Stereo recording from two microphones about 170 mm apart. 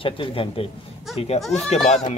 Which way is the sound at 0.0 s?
30° left (ahead or behind).